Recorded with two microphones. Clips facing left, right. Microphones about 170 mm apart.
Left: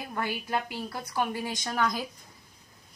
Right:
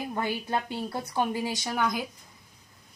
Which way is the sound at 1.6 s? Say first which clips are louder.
Left 3 dB; 5° right (ahead or behind).